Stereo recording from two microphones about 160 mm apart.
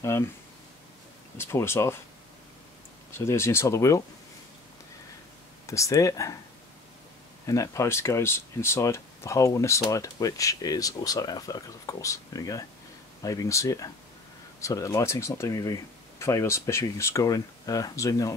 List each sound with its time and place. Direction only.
1.4 s speech: 15° left (ahead or behind)
3.1 s speech: 15° left (ahead or behind)
5.7 s speech: 20° left (ahead or behind)
7.4 s speech: 20° left (ahead or behind)